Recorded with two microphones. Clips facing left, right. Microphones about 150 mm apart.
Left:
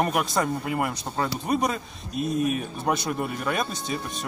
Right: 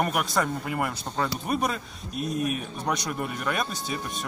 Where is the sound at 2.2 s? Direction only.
Centre (ahead or behind).